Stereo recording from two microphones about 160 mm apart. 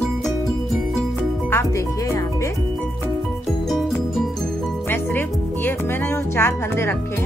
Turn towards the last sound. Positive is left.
turn(degrees=15)  # may be behind; listen again after turning